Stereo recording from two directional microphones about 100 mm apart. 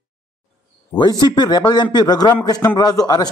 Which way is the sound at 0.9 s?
45° left (ahead or behind).